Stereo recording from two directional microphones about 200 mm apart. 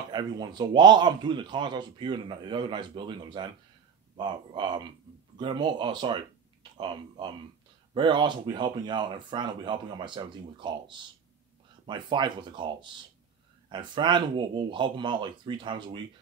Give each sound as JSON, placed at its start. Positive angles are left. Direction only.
{"t": 0.1, "sound": "a man's voice", "side_deg": -20}